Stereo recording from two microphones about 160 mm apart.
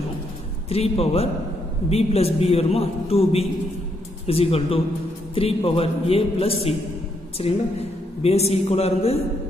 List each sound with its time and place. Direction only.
0.7 s a man's voice: 40° left (ahead or behind)